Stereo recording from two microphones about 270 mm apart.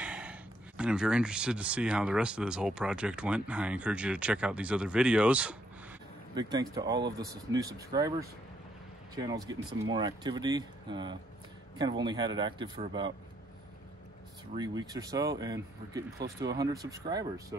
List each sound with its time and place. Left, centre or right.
0.0 s speech: centre
6.3 s speech: centre
14.5 s speech: centre